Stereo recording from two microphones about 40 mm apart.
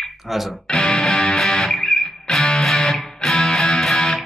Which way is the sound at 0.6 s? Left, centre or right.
Left.